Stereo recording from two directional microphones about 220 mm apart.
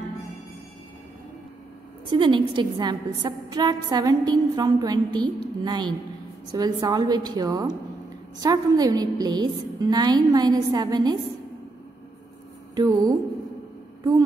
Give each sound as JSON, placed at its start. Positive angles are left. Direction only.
{"t": 2.0, "sound": "a woman's voice", "side_deg": -20}
{"t": 12.7, "sound": "a woman's voice", "side_deg": -15}